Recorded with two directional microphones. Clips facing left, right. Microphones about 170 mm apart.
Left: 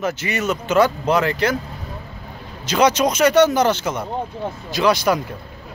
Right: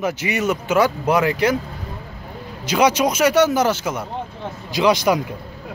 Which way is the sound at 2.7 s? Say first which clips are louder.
Even; 10° right (ahead or behind).